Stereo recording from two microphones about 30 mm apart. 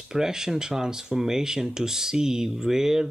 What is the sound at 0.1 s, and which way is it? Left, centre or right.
Speech, centre.